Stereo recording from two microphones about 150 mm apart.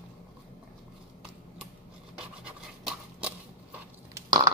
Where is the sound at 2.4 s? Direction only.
5° right (ahead or behind).